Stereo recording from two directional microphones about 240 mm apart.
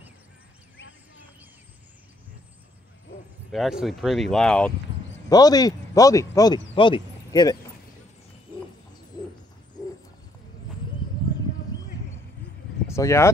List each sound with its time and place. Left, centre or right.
3.5 s speech: centre
5.3 s speech: centre
12.8 s speech: centre